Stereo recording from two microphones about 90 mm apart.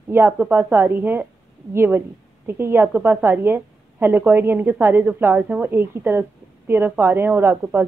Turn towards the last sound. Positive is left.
turn(degrees=-25)  # may be behind; listen again after turning